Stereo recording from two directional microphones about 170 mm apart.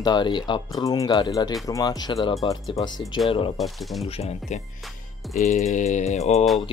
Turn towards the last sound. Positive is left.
turn(degrees=40)  # may be behind; listen again after turning